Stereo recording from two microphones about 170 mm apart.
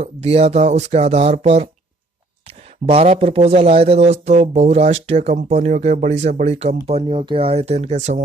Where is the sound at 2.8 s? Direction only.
35° right (ahead or behind).